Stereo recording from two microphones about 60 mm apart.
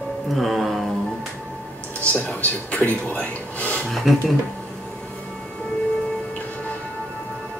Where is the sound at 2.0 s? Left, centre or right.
Left.